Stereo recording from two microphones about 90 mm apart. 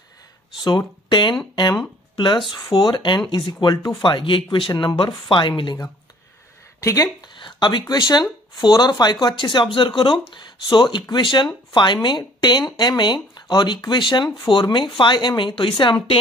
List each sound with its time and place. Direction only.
0.6 s speech: 55° left (ahead or behind)
2.1 s speech: 60° left (ahead or behind)
4.0 s speech: 65° left (ahead or behind)
6.8 s speech: 35° left (ahead or behind)
7.3 s a sound: 60° left (ahead or behind)
8.0 s speech: 55° left (ahead or behind); by 16.2 s 70° left (ahead or behind)